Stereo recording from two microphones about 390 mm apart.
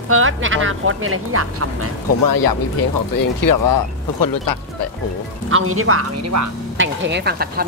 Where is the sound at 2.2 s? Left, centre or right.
Left.